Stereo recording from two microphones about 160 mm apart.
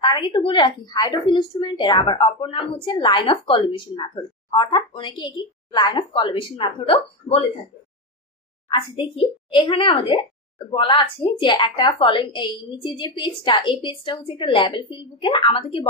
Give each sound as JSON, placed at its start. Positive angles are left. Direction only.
{"t": 0.0, "sound": "a woman's voice", "side_deg": 25}
{"t": 8.6, "sound": "a woman's voice", "side_deg": 35}